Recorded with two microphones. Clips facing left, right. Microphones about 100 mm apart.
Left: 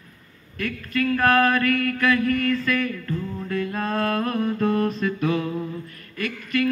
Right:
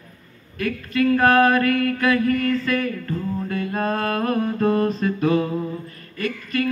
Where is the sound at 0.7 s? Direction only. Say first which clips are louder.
Right 4 dB; 30° right (ahead or behind).